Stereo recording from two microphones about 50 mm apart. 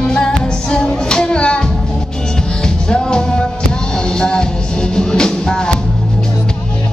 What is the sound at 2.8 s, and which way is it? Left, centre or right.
Music, centre.